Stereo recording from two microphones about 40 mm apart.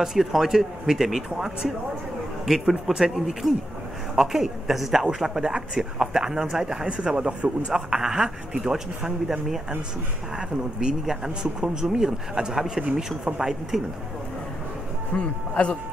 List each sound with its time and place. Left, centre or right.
0.0 s speech: centre
5.4 s speech: right
15.1 s speech: left